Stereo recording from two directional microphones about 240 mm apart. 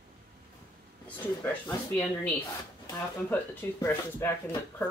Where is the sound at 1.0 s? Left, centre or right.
Centre.